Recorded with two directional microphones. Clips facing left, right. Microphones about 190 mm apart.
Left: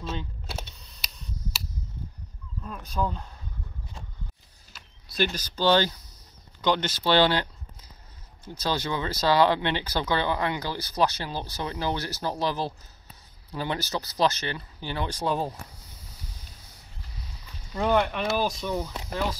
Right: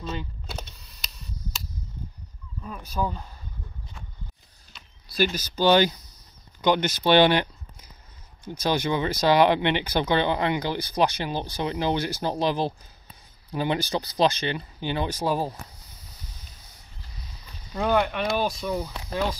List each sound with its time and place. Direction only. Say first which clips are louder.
0.2 s a sound: right 1 dB; centre (ahead or behind)
2.6 s speech: right 1 dB; 5° right (ahead or behind)
5.1 s speech: right 3 dB; 10° right (ahead or behind)
15.0 s speech: left 1 dB; 5° right (ahead or behind)
17.7 s speech: right 1 dB; centre (ahead or behind)